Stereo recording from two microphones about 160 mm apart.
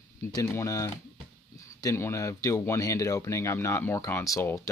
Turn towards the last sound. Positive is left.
turn(degrees=20)  # may be behind; listen again after turning